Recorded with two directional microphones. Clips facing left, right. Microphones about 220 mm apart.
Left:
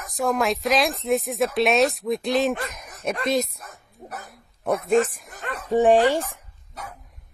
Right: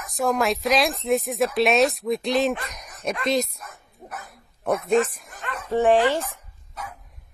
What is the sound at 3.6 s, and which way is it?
Dog, 35° left (ahead or behind).